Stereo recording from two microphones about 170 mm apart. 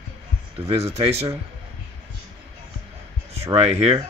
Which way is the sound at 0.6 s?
35° right (ahead or behind).